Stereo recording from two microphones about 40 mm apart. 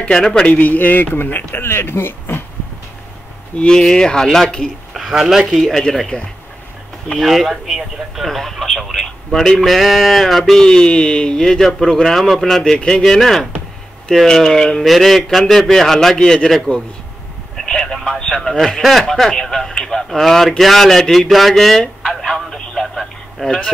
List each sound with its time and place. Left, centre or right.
0.3 s a man's voice: left
0.6 s speech: left
1.6 s speech: left
3.5 s a man's voice: left
4.9 s speech: centre
5.5 s speech: centre
16.7 s speech: left
17.6 s speech: centre
18.8 s speech: centre
21.1 s telephone: centre